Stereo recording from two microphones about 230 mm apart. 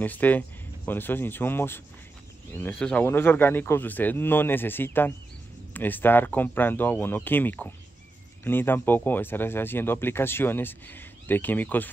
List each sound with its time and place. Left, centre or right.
0.0 s speech: centre